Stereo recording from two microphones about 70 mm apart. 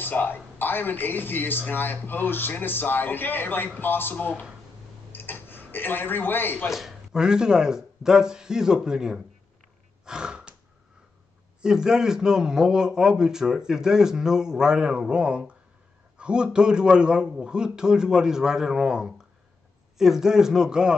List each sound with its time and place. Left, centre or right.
0.0 s a man's voice: left
5.1 s tick-tock: left
6.7 s a man's voice: centre
10.0 s gasp: centre
11.6 s a man's voice: centre